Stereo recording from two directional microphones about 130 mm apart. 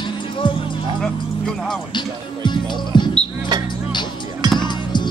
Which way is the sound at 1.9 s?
35° left (ahead or behind).